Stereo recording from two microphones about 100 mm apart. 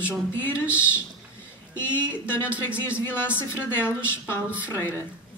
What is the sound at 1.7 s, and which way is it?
Speech, 20° left (ahead or behind).